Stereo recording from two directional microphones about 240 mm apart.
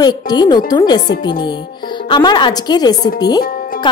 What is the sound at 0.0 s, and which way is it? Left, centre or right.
Speech, centre.